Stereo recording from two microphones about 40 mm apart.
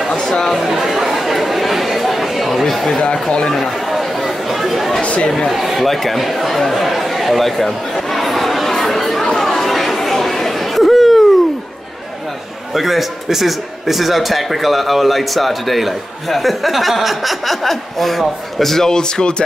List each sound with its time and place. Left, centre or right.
0.2 s speech: centre
0.6 s chatter: centre
3.0 s speech: centre
3.5 s chatter: centre
5.0 s speech: left
5.5 s chatter: centre
12.7 s a man's voice: centre; by 19.4 s left